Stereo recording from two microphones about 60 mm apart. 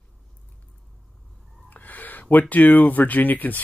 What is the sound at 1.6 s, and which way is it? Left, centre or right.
Speech, left.